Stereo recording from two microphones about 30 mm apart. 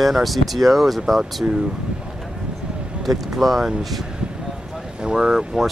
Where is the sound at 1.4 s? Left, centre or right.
Right.